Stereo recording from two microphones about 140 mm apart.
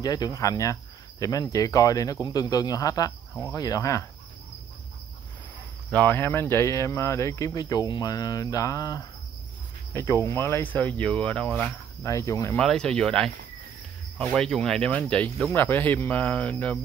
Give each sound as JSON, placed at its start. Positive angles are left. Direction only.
{"t": 0.0, "sound": "cricket", "side_deg": 30}
{"t": 5.9, "sound": "cricket", "side_deg": 10}
{"t": 9.9, "sound": "speech", "side_deg": 20}
{"t": 12.0, "sound": "cricket", "side_deg": 20}
{"t": 12.5, "sound": "speech", "side_deg": 5}